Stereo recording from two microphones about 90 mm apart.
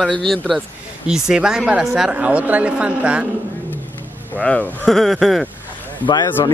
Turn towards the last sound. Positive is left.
turn(degrees=55)  # may be behind; listen again after turning